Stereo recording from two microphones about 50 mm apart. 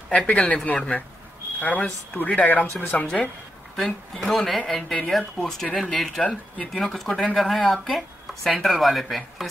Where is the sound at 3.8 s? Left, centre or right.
Centre.